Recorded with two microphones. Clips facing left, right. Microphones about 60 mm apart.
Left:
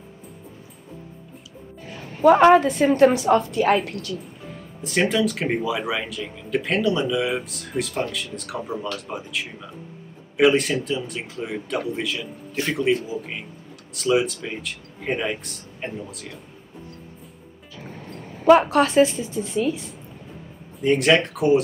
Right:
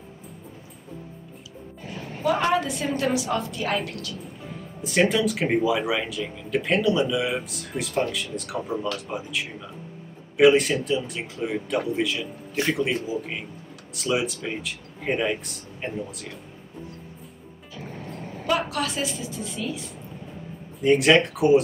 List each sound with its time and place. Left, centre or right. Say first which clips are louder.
2.2 s a woman's voice: left 9 dB; left
4.2 s speech: right 1 dB; centre
18.5 s a woman's voice: left 11 dB; left
20.8 s speech: even; centre